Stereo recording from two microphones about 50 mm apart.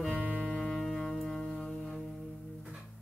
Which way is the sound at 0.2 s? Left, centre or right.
Right.